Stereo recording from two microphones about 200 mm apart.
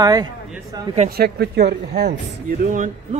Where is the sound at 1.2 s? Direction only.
55° right (ahead or behind).